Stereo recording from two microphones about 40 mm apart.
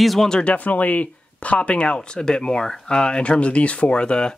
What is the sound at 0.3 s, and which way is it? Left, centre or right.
Speech, left.